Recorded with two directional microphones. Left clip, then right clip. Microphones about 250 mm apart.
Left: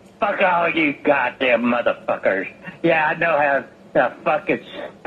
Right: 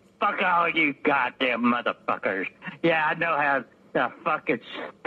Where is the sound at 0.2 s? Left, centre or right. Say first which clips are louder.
Left 5 dB; right.